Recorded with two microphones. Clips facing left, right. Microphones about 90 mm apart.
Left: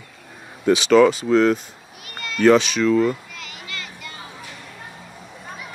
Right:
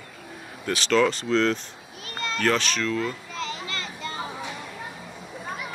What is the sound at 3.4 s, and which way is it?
Children playing, 30° right (ahead or behind).